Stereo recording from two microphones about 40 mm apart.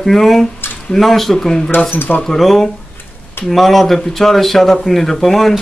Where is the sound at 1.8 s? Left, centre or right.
Left.